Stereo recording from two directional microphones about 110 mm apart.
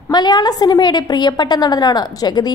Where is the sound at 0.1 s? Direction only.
40° left (ahead or behind).